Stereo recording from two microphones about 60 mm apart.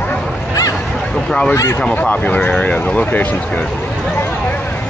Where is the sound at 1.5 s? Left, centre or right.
Left.